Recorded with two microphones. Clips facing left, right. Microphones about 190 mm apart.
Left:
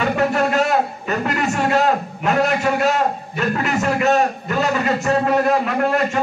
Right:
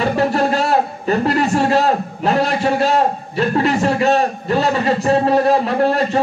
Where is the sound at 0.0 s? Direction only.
35° right (ahead or behind).